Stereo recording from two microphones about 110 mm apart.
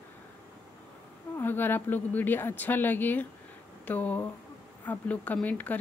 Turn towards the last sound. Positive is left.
turn(degrees=15)  # may be behind; listen again after turning